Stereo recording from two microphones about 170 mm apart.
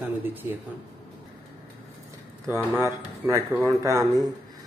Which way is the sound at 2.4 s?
15° right (ahead or behind).